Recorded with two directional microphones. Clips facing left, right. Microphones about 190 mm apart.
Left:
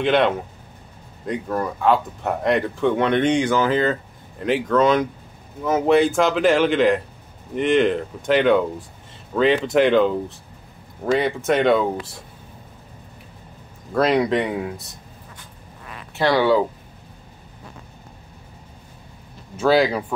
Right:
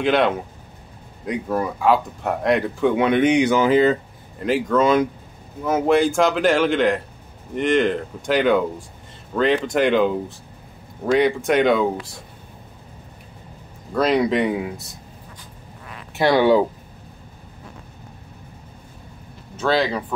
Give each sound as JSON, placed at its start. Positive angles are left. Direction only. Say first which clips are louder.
{"t": 0.0, "sound": "speech", "louder": "even", "side_deg": 0}
{"t": 4.4, "sound": "speech", "louder": "even", "side_deg": -5}
{"t": 13.9, "sound": "speech", "louder": "even", "side_deg": 0}
{"t": 16.2, "sound": "speech", "louder": "right 2 dB", "side_deg": -15}
{"t": 19.6, "sound": "speech", "louder": "left 3 dB", "side_deg": 5}